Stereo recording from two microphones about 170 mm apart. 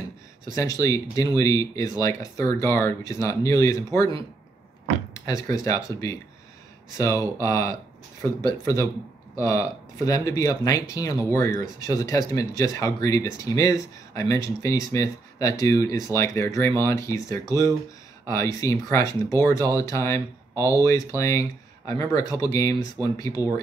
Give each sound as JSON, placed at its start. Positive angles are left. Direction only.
{"t": 0.5, "sound": "speech", "side_deg": 20}
{"t": 5.1, "sound": "speech", "side_deg": 20}
{"t": 7.4, "sound": "speech", "side_deg": 20}
{"t": 20.5, "sound": "speech", "side_deg": -15}
{"t": 20.8, "sound": "speech", "side_deg": 15}